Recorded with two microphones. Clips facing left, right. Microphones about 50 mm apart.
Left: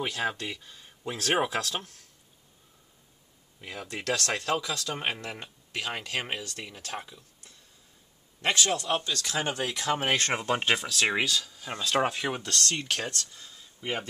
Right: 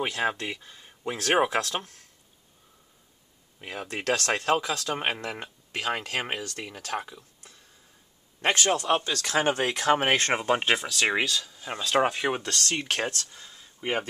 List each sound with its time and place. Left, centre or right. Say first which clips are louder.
0.0 s speech: right 3 dB; right
3.6 s speech: right 4 dB; right
10.1 s speech: right 3 dB; centre